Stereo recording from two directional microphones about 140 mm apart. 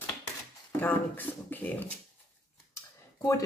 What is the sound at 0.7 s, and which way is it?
Speech, 15° left (ahead or behind).